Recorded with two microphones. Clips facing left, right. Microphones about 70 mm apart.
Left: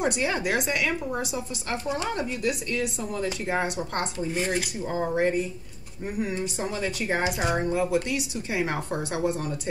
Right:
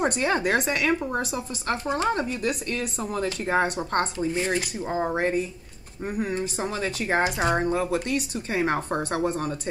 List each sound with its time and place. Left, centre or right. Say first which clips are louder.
0.0 s a woman's voice: right 2 dB; right
6.0 s a woman's voice: right 1 dB; right